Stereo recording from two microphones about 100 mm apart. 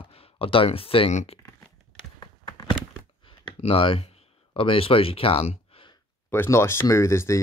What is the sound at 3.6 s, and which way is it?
Speech, 65° left (ahead or behind).